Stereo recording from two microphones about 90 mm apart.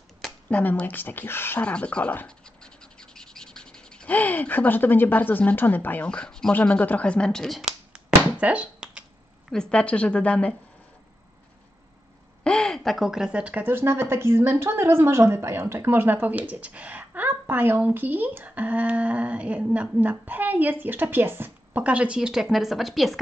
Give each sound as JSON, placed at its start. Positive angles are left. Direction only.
{"t": 0.2, "sound": "speech", "side_deg": 15}
{"t": 1.6, "sound": "speech", "side_deg": 15}
{"t": 8.4, "sound": "a sound", "side_deg": -15}
{"t": 9.5, "sound": "speech", "side_deg": 10}
{"t": 12.4, "sound": "a woman's voice", "side_deg": 10}